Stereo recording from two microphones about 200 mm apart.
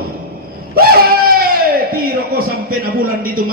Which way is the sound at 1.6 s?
50° right (ahead or behind).